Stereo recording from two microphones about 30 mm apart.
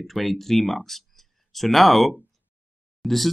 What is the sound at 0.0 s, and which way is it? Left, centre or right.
Speech, centre.